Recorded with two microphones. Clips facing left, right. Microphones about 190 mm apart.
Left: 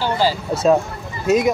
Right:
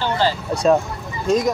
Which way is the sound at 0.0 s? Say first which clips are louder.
Left 1 dB; 5° left (ahead or behind).